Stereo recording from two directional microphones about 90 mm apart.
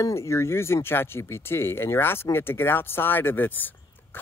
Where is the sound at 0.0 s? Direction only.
35° left (ahead or behind).